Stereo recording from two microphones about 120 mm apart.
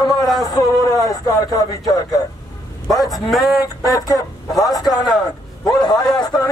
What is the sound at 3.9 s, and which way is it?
Speech, 30° left (ahead or behind).